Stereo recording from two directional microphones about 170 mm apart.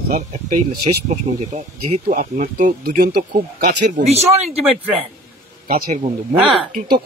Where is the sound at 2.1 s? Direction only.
50° right (ahead or behind).